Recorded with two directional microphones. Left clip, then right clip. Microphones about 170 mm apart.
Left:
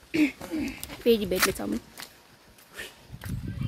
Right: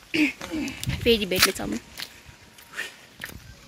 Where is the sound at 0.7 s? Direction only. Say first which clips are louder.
Right 2 dB; 5° left (ahead or behind).